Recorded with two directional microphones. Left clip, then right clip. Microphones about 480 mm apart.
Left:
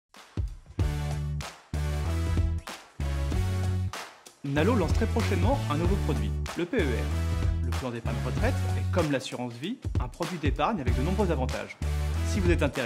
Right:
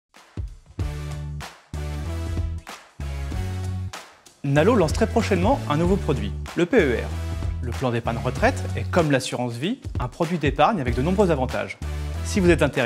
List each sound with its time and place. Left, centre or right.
4.6 s speech: right